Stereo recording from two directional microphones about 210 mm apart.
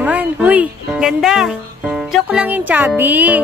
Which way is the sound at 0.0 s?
10° right (ahead or behind).